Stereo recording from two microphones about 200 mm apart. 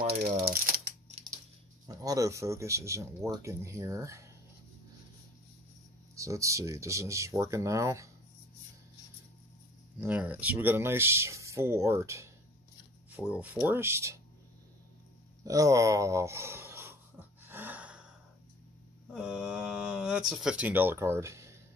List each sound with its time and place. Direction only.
0.0 s a sound: 50° right (ahead or behind)
1.9 s speech: 15° right (ahead or behind)
6.1 s speech: 15° right (ahead or behind)
9.9 s speech: 10° right (ahead or behind)
15.4 s speech: 15° right (ahead or behind)
17.5 s gasp: 10° right (ahead or behind)
19.1 s speech: 5° right (ahead or behind)